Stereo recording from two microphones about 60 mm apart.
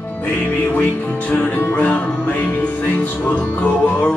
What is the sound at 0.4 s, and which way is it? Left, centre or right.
Music, left.